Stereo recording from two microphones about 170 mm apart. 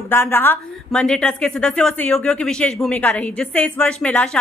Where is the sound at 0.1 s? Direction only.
15° left (ahead or behind).